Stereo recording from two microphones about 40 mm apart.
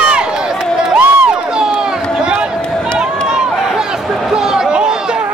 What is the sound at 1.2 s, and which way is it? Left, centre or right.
Crowd, right.